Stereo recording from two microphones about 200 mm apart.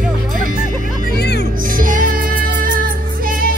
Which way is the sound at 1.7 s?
45° right (ahead or behind).